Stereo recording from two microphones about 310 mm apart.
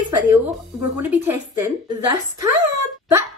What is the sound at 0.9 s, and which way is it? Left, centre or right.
Speech, centre.